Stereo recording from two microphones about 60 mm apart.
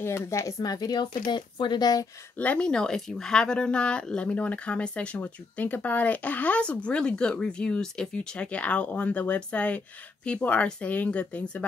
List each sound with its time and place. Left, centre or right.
0.0 s speech: left
2.3 s speech: left
2.6 s speech: centre